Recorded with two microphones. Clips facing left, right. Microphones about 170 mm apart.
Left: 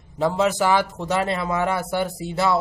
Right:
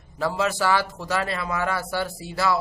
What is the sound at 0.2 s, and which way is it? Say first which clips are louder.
A man's voice: left 4 dB; 20° left (ahead or behind).